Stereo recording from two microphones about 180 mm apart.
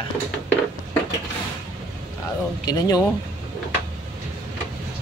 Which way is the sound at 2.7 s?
20° left (ahead or behind).